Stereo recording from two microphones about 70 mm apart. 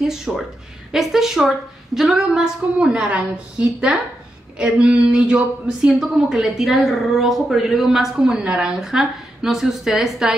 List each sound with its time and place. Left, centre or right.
0.0 s a woman's voice: centre
5.9 s a woman's voice: centre